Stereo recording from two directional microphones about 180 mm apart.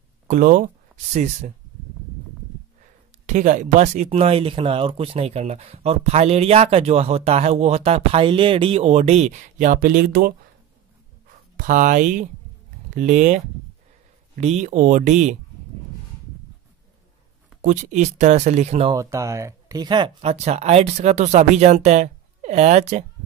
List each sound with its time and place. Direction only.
0.3 s speech: 45° right (ahead or behind)
2.8 s speech: 40° right (ahead or behind)
17.6 s speech: 40° right (ahead or behind)
18.9 s speech: 15° right (ahead or behind)
20.2 s speech: 35° right (ahead or behind)